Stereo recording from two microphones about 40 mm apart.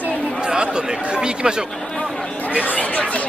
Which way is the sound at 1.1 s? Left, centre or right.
Right.